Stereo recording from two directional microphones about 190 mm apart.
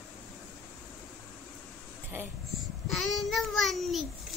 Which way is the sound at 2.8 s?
Centre (ahead or behind).